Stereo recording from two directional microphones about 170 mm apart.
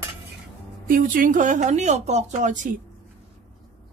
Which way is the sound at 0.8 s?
55° right (ahead or behind).